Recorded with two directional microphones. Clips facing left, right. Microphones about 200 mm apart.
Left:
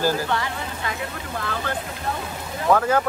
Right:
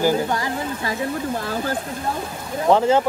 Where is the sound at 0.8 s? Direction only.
25° right (ahead or behind).